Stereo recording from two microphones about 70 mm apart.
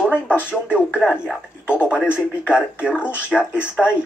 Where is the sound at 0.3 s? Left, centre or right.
Left.